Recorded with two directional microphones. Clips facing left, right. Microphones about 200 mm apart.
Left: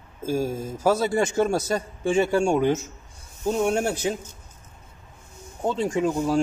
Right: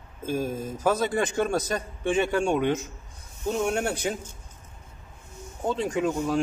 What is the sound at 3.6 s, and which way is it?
Speech, 25° left (ahead or behind).